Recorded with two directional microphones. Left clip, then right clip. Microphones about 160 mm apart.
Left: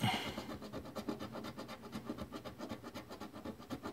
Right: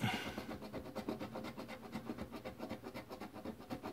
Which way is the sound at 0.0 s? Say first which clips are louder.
Left 3 dB; 20° left (ahead or behind).